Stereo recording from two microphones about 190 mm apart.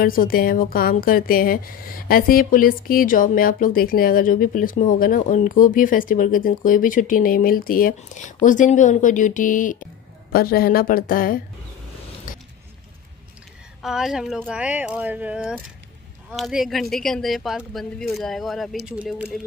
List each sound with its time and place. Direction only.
0.0 s a woman's voice: 50° left (ahead or behind)
12.3 s keys jangling: 45° left (ahead or behind)
13.8 s speech: centre (ahead or behind)